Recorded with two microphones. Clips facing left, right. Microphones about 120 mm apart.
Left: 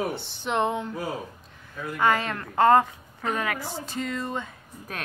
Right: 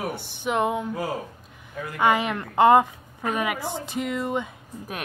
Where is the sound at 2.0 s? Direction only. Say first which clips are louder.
Right 2 dB; 15° right (ahead or behind).